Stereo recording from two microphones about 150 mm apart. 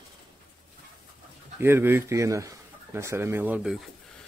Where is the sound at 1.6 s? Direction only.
15° right (ahead or behind).